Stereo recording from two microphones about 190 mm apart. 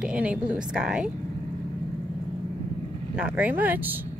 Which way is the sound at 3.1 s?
5° right (ahead or behind).